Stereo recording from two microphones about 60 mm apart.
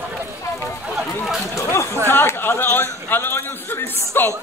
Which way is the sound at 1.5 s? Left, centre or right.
Left.